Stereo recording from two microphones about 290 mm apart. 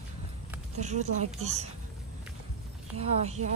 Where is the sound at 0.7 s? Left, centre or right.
Right.